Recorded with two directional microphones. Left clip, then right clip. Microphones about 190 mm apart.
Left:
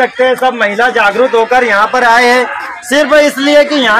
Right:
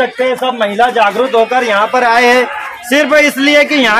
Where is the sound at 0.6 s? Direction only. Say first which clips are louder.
Left 1 dB; 40° left (ahead or behind).